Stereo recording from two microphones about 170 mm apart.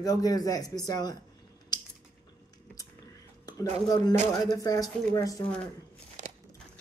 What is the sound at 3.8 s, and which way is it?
A man's voice, 20° left (ahead or behind).